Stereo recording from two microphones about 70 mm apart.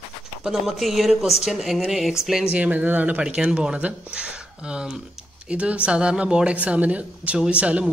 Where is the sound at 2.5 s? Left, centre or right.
Right.